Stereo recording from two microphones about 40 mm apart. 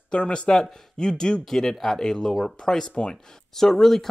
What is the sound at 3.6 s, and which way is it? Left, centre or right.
Speech, centre.